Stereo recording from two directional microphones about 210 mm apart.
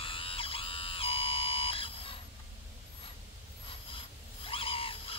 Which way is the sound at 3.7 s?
25° left (ahead or behind).